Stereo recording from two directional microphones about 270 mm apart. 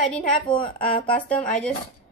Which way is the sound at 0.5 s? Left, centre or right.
Centre.